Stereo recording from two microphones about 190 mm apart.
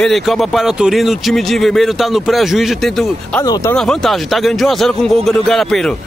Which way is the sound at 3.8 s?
Centre (ahead or behind).